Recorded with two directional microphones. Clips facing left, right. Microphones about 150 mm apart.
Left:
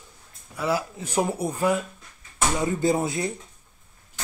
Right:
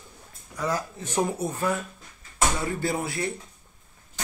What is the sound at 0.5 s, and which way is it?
Speech, 10° left (ahead or behind).